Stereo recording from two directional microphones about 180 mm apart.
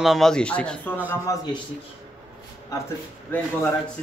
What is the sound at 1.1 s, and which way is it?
Speech, 20° left (ahead or behind).